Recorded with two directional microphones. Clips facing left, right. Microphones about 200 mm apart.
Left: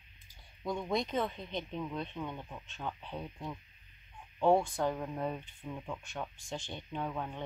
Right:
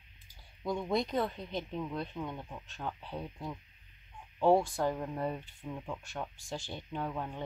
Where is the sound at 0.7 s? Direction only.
Centre (ahead or behind).